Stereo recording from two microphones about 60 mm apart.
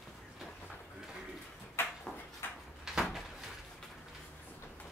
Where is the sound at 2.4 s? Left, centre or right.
Left.